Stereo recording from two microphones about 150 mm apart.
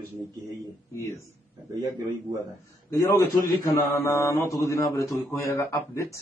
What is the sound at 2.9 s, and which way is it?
A man's voice, 20° left (ahead or behind).